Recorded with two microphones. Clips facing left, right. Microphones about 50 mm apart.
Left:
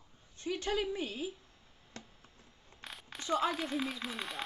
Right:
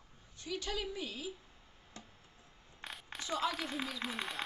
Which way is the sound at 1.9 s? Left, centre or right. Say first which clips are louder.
Left 3 dB; left.